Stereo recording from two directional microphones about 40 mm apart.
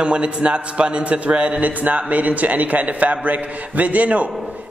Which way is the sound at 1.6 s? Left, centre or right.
Right.